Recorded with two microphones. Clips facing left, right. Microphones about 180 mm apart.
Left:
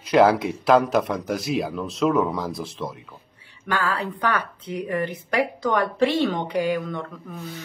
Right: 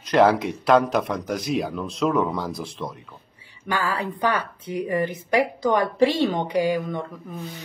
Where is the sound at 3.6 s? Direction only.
10° right (ahead or behind).